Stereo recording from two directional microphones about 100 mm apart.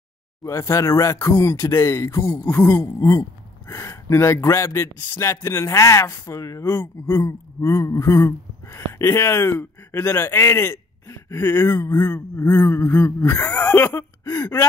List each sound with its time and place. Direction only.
0.4 s speech: 30° left (ahead or behind)